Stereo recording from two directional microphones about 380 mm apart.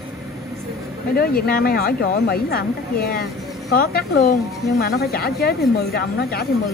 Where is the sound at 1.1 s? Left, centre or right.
Left.